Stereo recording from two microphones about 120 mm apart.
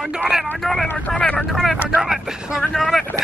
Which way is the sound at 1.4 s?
Centre (ahead or behind).